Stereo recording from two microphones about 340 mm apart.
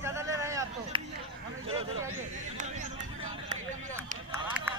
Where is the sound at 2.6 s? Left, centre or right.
Right.